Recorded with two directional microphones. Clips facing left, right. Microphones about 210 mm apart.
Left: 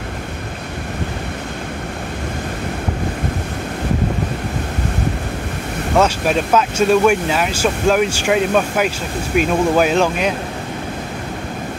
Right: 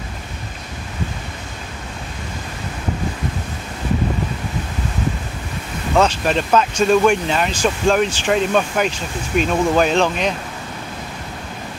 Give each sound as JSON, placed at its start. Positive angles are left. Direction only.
{"t": 5.9, "sound": "speech", "side_deg": 5}